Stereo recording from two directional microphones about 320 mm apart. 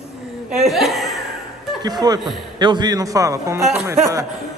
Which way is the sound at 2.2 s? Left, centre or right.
Centre.